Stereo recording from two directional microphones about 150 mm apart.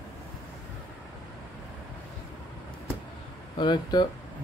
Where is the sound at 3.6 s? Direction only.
30° left (ahead or behind).